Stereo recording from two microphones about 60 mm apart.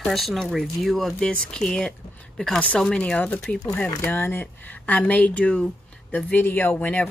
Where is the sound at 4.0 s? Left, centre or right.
Left.